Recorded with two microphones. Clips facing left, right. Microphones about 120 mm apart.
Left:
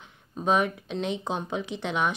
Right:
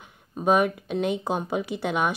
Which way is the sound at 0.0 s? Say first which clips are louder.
Right 4 dB; 10° right (ahead or behind).